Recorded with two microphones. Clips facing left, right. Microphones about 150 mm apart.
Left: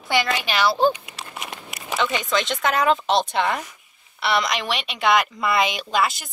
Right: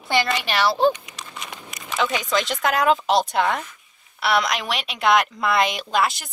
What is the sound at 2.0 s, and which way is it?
Speech, centre (ahead or behind).